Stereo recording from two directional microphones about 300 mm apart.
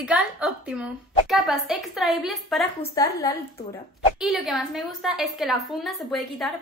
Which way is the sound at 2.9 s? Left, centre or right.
Centre.